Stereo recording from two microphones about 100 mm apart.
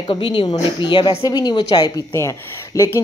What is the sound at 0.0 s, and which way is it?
A woman's voice, 55° left (ahead or behind).